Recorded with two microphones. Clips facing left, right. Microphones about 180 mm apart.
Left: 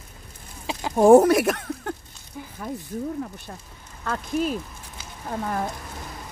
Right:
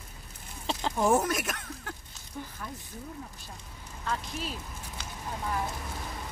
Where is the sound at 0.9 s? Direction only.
55° left (ahead or behind).